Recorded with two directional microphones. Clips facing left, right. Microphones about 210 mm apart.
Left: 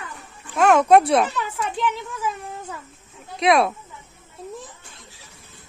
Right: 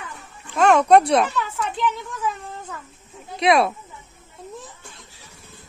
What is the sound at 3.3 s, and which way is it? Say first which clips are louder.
Speech: even; centre (ahead or behind).